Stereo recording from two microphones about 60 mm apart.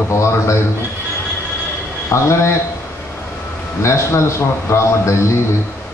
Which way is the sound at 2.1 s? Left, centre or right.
Left.